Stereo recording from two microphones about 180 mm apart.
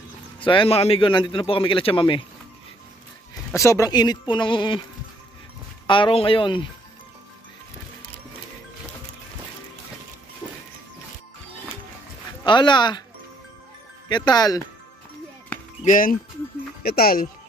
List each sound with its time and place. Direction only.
0.4 s a man's voice: 30° left (ahead or behind)
3.5 s a man's voice: 15° left (ahead or behind)
5.9 s a man's voice: 30° left (ahead or behind)
12.4 s a man's voice: 25° left (ahead or behind)
14.0 s a man's voice: 25° left (ahead or behind)
15.8 s speech: 50° left (ahead or behind)